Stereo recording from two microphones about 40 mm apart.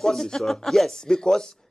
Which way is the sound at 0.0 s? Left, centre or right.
Centre.